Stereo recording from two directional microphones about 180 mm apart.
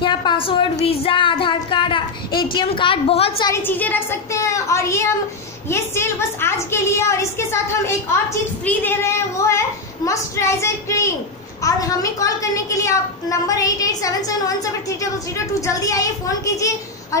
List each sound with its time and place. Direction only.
0.0 s speech: 25° left (ahead or behind)
3.4 s a woman's voice: 15° left (ahead or behind)